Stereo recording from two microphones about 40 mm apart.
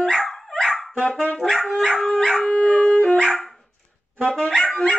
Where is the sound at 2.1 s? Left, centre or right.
Centre.